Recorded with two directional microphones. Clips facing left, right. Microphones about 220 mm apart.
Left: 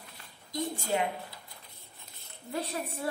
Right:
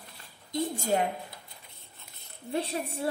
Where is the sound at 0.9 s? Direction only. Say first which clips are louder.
Right 3 dB; 45° right (ahead or behind).